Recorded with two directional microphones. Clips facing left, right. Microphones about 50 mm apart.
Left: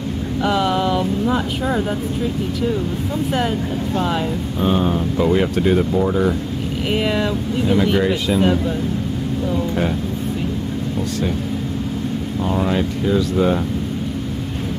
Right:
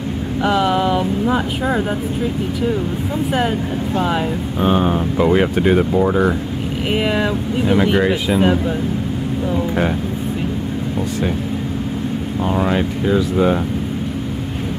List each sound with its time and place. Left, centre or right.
0.4 s speech: centre
1.2 s speech: right
3.3 s speech: centre
5.9 s speech: right
6.9 s speech: centre
12.4 s speech: right